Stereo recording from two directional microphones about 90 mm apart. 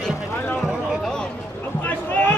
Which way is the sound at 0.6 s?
Centre (ahead or behind).